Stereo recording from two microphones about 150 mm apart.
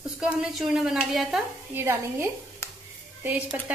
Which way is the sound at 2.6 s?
20° left (ahead or behind).